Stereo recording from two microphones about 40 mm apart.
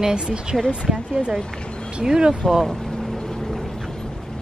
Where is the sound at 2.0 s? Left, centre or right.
Centre.